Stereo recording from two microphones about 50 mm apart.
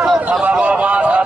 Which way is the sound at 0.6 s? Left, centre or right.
Right.